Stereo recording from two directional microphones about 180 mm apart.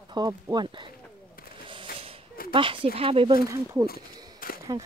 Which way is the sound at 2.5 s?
30° right (ahead or behind).